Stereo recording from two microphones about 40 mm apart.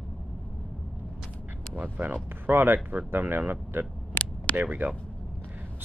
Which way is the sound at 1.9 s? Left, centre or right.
Right.